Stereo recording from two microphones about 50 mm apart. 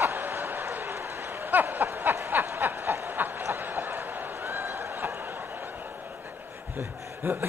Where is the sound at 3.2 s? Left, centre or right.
Right.